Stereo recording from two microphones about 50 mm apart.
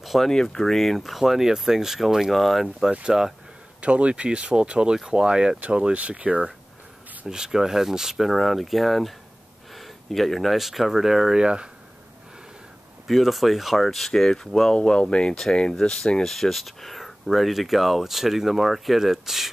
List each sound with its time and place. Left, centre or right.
0.0 s a sound: centre
0.3 s speech: centre
2.9 s speech: right
7.2 s speech: centre
13.0 s speech: centre